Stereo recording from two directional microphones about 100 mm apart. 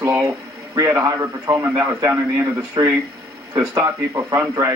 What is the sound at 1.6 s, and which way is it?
A man's voice, 25° right (ahead or behind).